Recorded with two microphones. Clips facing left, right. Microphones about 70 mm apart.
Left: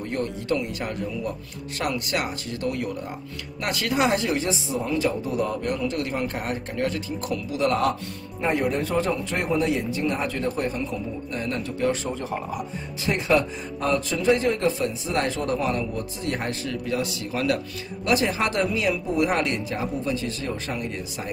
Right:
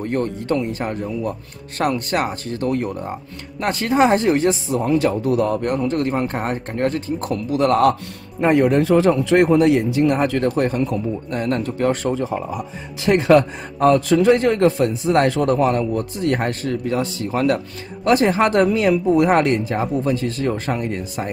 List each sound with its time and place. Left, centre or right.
0.0 s a man's voice: right
8.4 s a man's voice: right
15.5 s a man's voice: right